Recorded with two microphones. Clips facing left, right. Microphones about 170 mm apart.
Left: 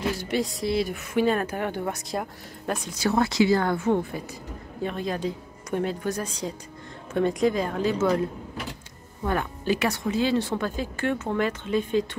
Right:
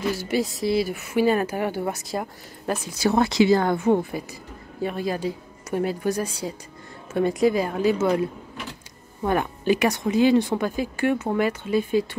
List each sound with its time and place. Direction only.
0.2 s speech: 5° right (ahead or behind)
3.1 s speech: 20° right (ahead or behind)